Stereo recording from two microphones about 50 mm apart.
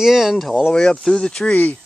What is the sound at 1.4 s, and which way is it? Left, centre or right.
Speech, left.